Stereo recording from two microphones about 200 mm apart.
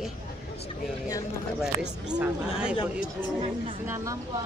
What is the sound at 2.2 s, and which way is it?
Speech, 5° right (ahead or behind).